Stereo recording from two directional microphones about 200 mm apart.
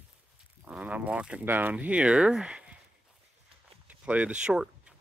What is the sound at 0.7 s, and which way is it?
Speech, 5° right (ahead or behind).